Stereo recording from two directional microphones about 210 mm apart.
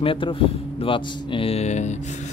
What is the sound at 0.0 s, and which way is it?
Speech, 25° left (ahead or behind).